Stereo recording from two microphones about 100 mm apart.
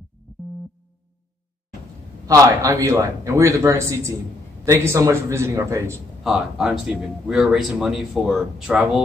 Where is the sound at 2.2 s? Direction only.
35° right (ahead or behind).